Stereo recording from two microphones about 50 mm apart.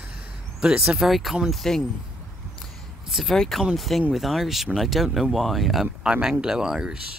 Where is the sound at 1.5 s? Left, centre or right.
Centre.